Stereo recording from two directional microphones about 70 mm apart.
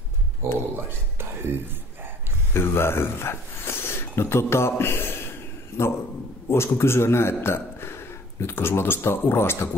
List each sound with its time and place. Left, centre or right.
0.6 s whispering: right
2.5 s speech: left
6.5 s a man's voice: left